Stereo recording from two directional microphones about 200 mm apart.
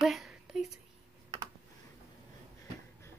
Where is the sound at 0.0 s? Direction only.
Centre (ahead or behind).